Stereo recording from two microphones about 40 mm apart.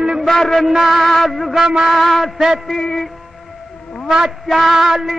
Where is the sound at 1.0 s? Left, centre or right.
Centre.